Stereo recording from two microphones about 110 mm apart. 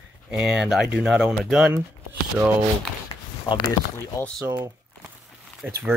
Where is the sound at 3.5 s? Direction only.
40° left (ahead or behind).